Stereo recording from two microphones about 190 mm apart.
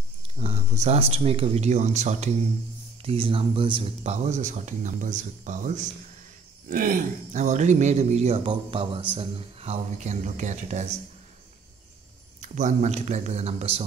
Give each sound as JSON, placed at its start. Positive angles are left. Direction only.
{"t": 0.4, "sound": "speech", "side_deg": -35}
{"t": 12.4, "sound": "speech", "side_deg": -40}